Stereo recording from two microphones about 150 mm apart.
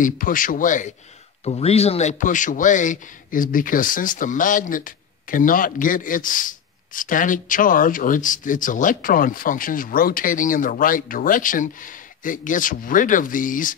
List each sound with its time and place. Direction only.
0.0 s a man's voice: 60° left (ahead or behind)
1.4 s a man's voice: 45° left (ahead or behind); by 13.7 s 60° left (ahead or behind)